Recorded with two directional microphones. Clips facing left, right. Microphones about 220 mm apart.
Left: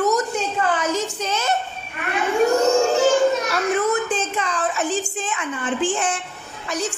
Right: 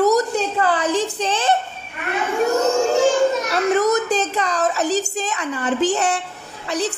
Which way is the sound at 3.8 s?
40° right (ahead or behind).